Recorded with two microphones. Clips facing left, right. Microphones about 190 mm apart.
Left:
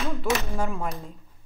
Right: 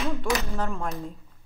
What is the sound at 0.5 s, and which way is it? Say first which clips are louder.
Speech: left 1 dB; 10° left (ahead or behind).